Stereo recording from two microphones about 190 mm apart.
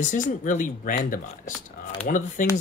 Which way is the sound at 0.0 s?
40° left (ahead or behind).